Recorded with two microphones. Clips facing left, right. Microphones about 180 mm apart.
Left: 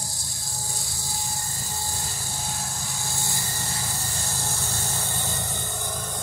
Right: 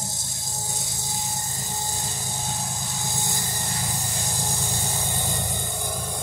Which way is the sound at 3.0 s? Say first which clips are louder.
Right 3 dB; 20° right (ahead or behind).